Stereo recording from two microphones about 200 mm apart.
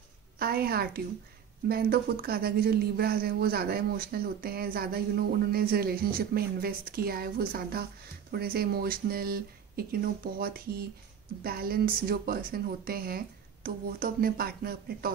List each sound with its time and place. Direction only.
0.4 s a woman's voice: 50° right (ahead or behind)